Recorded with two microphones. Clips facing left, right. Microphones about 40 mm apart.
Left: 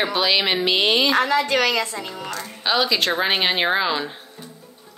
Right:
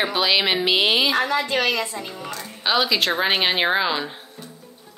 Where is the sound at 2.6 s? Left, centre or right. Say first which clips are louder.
Even; centre.